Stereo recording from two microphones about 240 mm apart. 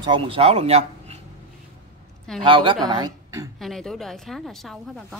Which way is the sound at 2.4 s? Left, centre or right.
Right.